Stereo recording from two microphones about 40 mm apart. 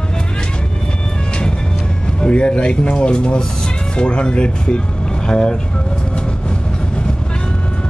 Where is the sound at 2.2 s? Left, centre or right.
Left.